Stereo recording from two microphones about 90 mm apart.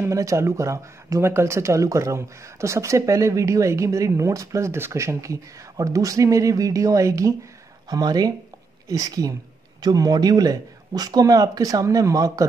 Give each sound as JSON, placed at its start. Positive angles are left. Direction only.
{"t": 0.0, "sound": "speech", "side_deg": -35}